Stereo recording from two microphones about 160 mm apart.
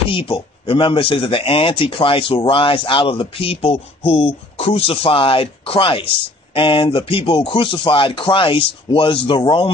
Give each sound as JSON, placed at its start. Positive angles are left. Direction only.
{"t": 0.1, "sound": "speech", "side_deg": 35}